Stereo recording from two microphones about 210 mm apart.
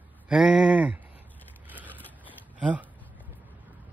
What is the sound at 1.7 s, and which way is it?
Vehicle, 10° right (ahead or behind).